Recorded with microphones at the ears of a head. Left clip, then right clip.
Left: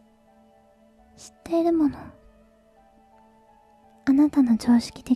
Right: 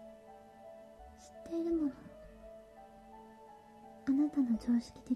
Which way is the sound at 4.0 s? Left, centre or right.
Left.